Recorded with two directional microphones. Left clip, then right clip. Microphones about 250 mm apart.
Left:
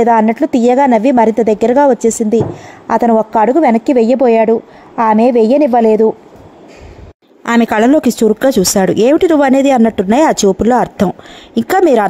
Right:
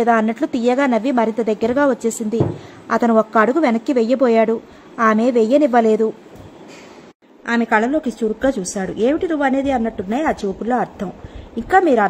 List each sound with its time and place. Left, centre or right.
0.0 s a woman's voice: left
7.4 s speech: left